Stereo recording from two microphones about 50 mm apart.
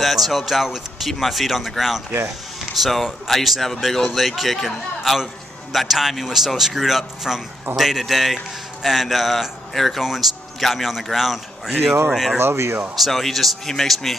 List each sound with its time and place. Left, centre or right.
0.0 s a man's voice: centre
12.4 s speech: right
12.9 s a man's voice: centre